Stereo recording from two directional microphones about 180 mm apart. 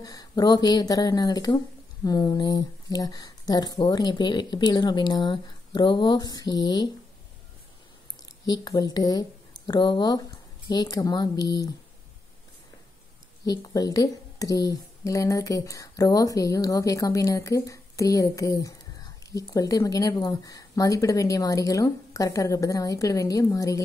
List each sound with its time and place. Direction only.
0.0 s speech: 20° left (ahead or behind)
8.5 s speech: 20° left (ahead or behind)
13.5 s a woman's voice: 20° left (ahead or behind)